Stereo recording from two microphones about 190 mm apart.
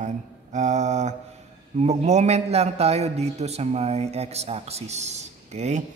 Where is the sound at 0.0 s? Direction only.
40° right (ahead or behind).